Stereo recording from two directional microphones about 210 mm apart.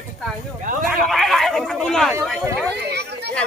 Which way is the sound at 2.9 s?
50° right (ahead or behind).